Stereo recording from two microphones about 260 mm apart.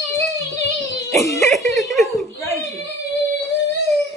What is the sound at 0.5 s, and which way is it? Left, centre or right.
Music, right.